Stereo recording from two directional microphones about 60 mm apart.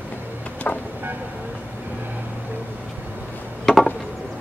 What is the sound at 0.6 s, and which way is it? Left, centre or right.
Vehicle, centre.